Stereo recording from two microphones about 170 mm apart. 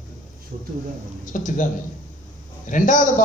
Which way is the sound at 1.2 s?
50° left (ahead or behind).